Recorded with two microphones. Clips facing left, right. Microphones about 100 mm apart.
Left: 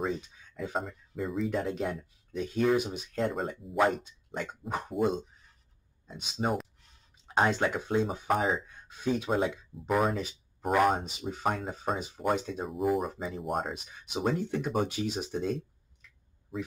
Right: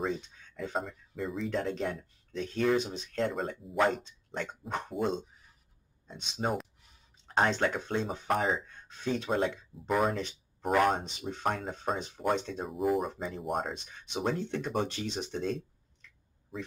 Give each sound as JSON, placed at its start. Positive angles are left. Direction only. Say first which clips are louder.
{"t": 0.0, "sound": "speech", "louder": "left 1 dB", "side_deg": 5}